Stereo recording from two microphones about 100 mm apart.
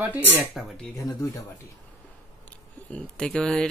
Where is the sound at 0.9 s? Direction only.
35° left (ahead or behind).